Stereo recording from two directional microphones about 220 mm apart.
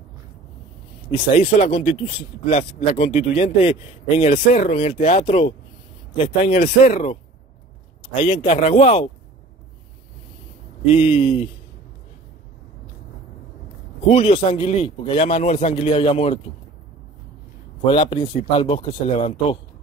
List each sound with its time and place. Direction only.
1.1 s a man's voice: 25° left (ahead or behind)
6.2 s a man's voice: 40° left (ahead or behind)
10.9 s a man's voice: 25° left (ahead or behind)
14.0 s a man's voice: 25° left (ahead or behind)
17.8 s a man's voice: 25° left (ahead or behind)